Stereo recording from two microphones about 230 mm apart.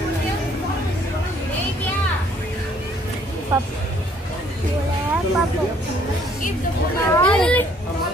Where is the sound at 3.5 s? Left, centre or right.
Centre.